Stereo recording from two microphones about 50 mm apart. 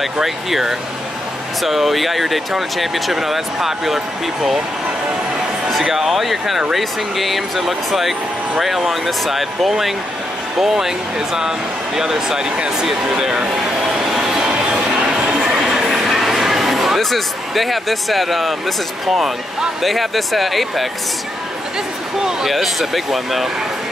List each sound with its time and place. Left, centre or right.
0.0 s speech: centre
5.7 s speech: centre
13.8 s a sound: centre
19.1 s speech: centre
22.2 s speech: centre